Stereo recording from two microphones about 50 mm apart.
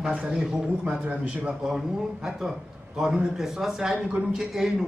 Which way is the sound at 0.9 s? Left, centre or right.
Right.